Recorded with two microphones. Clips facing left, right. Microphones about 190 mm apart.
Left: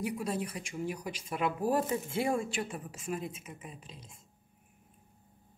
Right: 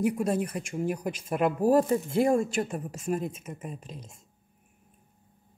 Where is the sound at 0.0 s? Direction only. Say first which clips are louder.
Right 8 dB; 50° right (ahead or behind).